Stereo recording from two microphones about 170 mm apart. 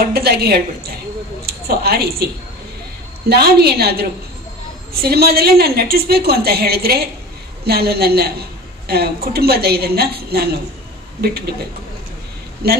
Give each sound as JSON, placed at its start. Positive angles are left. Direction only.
{"t": 0.1, "sound": "a woman's voice", "side_deg": -70}
{"t": 3.3, "sound": "a woman's voice", "side_deg": -70}
{"t": 12.6, "sound": "speech", "side_deg": -65}